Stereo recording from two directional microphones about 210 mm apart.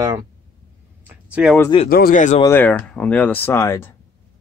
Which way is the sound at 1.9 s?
45° left (ahead or behind).